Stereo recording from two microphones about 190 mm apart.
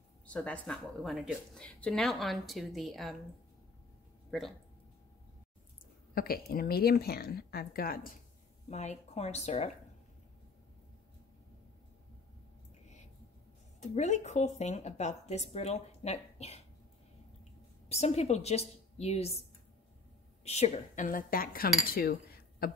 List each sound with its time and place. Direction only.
0.3 s speech: 5° left (ahead or behind)
4.3 s speech: centre (ahead or behind)
6.1 s cutlery: 50° left (ahead or behind)
8.6 s speech: 35° left (ahead or behind)
13.7 s speech: 40° left (ahead or behind)
17.8 s speech: 35° left (ahead or behind)
20.4 s cutlery: 35° left (ahead or behind); by 22.7 s 50° left (ahead or behind)